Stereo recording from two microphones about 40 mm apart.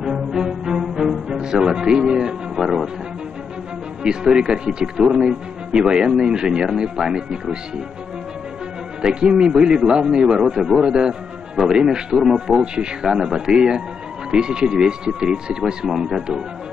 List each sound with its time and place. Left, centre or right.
0.0 s music: centre
4.0 s speech: right
9.0 s speech: centre
15.9 s speech: centre
16.2 s speech: centre